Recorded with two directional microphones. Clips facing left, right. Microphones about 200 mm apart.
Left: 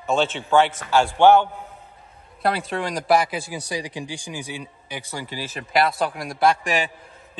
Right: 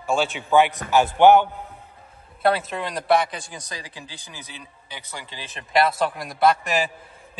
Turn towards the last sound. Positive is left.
turn(degrees=0)  # may be behind; listen again after turning